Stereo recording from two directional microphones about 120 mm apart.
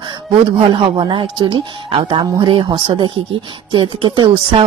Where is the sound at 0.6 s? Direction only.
45° right (ahead or behind).